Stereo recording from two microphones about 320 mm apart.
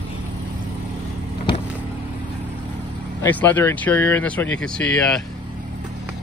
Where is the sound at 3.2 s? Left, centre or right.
Centre.